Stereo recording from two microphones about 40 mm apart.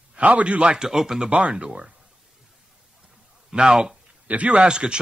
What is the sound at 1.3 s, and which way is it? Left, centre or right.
Speech, right.